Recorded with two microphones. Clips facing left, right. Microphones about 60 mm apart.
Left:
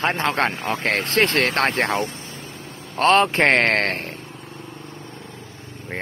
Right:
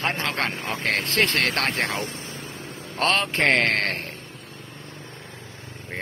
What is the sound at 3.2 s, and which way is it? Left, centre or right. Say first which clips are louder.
Speech: left 3 dB; left.